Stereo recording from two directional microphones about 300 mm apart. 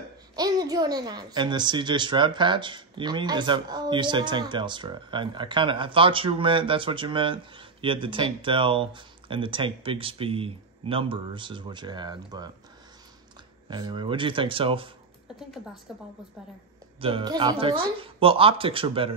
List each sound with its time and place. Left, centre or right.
0.4 s a child's voice: centre
13.7 s a child's voice: centre
15.3 s a woman's voice: centre
17.0 s a child's voice: centre